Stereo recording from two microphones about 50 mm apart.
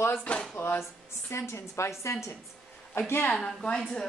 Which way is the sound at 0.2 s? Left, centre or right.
Left.